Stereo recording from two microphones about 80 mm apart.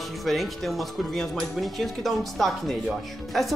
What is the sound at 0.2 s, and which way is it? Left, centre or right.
Speech, centre.